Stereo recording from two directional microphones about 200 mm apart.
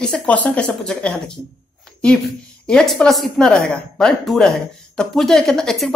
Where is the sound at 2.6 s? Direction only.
Centre (ahead or behind).